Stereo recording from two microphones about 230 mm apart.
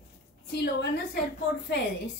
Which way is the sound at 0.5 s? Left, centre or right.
Left.